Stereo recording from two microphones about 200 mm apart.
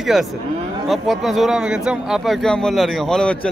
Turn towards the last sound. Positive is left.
turn(degrees=5)  # may be behind; listen again after turning